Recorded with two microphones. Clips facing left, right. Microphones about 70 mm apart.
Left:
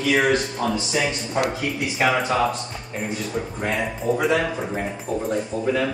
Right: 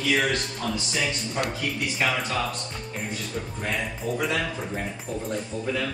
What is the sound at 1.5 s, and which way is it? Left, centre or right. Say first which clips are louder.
Speech: left 3 dB; centre.